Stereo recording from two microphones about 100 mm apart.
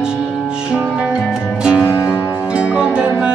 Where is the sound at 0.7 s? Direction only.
10° right (ahead or behind).